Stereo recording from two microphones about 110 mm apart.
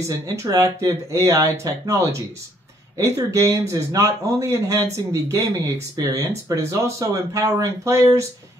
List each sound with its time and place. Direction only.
0.0 s speech: 25° right (ahead or behind)